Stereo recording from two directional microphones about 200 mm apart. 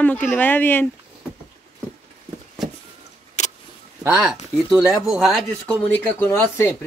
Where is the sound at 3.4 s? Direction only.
35° left (ahead or behind).